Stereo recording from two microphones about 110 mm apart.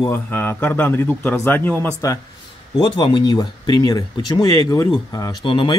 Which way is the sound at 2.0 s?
30° left (ahead or behind).